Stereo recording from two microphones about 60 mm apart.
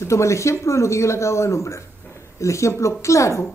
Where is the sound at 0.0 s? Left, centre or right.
Left.